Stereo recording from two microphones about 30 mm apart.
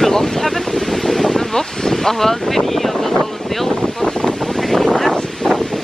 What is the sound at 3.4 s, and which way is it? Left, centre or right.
Wind noise, centre.